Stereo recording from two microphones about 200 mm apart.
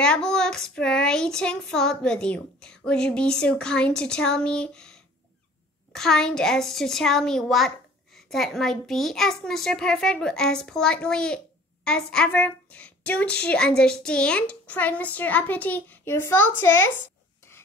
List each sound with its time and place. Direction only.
0.0 s a child's voice: 5° left (ahead or behind)